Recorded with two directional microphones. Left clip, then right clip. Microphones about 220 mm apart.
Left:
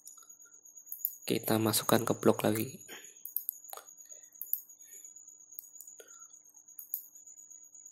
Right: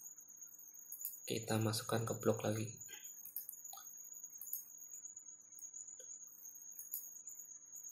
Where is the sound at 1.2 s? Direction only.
35° left (ahead or behind).